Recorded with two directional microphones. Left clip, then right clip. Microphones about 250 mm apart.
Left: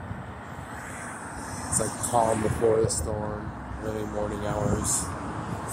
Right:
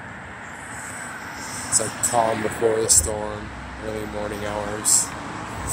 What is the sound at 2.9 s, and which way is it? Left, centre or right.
Speech, centre.